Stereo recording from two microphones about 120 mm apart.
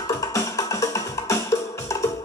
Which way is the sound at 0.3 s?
25° left (ahead or behind).